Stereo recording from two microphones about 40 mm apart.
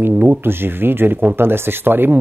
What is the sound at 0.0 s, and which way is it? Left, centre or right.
Speech, right.